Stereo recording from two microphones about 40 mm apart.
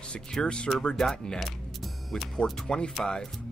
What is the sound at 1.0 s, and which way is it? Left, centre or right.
Speech, centre.